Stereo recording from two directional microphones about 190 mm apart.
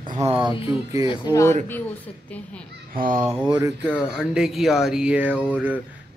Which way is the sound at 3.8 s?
5° left (ahead or behind).